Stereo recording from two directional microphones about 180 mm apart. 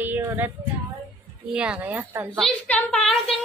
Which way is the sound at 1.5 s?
5° right (ahead or behind).